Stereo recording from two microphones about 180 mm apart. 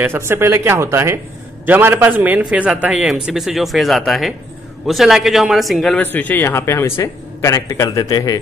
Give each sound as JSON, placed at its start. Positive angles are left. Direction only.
{"t": 0.0, "sound": "a man's voice", "side_deg": -15}